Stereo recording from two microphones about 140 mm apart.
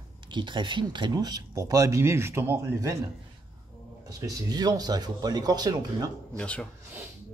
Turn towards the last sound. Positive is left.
turn(degrees=10)  # may be behind; listen again after turning